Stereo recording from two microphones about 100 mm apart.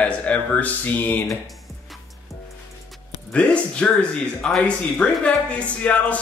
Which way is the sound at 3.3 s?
10° left (ahead or behind).